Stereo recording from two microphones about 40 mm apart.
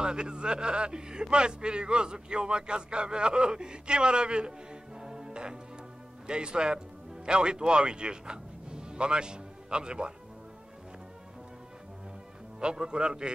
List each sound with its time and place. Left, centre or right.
0.0 s a man's voice: right
5.0 s music: centre
6.2 s a man's voice: right
12.5 s a man's voice: right